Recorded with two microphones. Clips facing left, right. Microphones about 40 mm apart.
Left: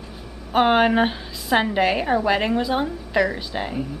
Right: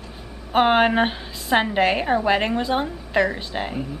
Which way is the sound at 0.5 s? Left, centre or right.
Centre.